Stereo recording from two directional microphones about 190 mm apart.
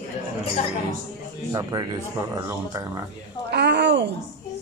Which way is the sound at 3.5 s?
65° right (ahead or behind).